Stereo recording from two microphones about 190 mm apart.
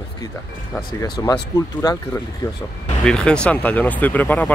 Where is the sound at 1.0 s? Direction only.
20° left (ahead or behind).